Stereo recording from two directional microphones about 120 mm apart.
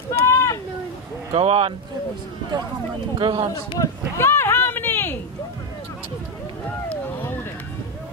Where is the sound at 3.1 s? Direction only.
40° right (ahead or behind).